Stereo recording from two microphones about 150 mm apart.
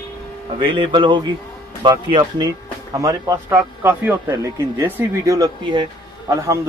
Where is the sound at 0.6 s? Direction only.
35° right (ahead or behind).